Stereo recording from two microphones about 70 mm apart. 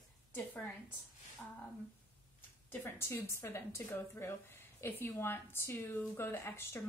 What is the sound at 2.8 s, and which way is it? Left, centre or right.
Speech, left.